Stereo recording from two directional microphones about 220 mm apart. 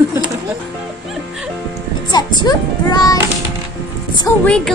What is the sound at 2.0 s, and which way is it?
Music, 20° left (ahead or behind).